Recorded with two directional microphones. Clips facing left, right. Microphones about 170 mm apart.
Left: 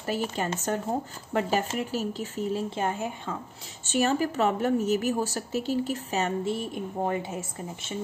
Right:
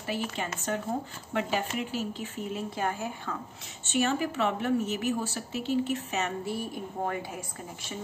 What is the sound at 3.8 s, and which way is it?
A woman's voice, 35° left (ahead or behind).